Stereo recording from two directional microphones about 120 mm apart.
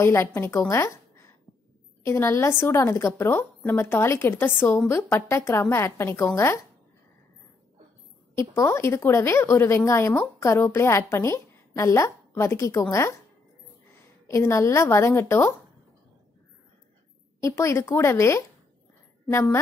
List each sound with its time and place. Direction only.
0.0 s a woman's voice: 20° left (ahead or behind)
8.4 s a woman's voice: 25° left (ahead or behind)
14.2 s a woman's voice: 25° left (ahead or behind)
17.4 s a woman's voice: 25° left (ahead or behind)